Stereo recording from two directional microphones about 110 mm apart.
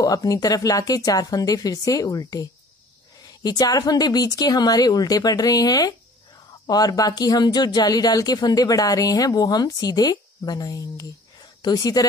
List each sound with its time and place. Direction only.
0.0 s speech: 35° left (ahead or behind)